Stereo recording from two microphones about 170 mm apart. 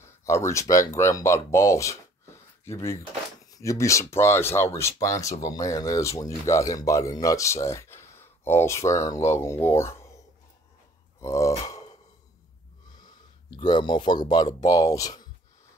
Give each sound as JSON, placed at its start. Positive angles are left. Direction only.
{"t": 0.2, "sound": "speech", "side_deg": 15}
{"t": 11.1, "sound": "cutlery", "side_deg": 20}
{"t": 13.0, "sound": "speech", "side_deg": 25}